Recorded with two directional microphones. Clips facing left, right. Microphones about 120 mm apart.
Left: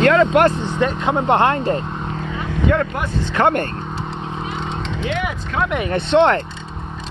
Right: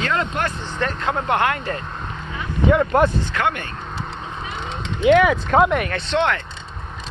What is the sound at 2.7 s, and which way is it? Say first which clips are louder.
Speech: right 2 dB; 10° right (ahead or behind).